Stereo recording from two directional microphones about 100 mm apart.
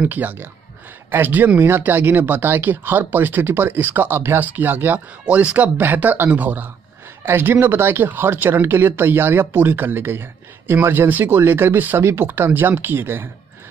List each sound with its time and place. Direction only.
0.0 s speech: 15° right (ahead or behind)